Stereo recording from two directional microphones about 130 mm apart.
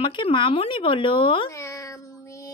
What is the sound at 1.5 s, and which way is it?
Cat, 25° left (ahead or behind).